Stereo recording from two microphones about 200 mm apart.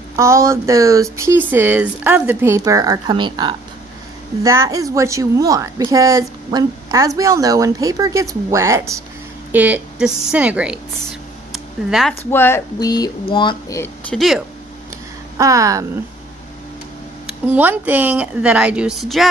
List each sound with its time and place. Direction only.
0.1 s a woman's voice: 15° right (ahead or behind)
11.9 s speech: centre (ahead or behind)
12.3 s speech: 10° left (ahead or behind)
14.1 s speech: centre (ahead or behind)
15.3 s a woman's voice: 15° right (ahead or behind)
17.3 s speech: 10° right (ahead or behind)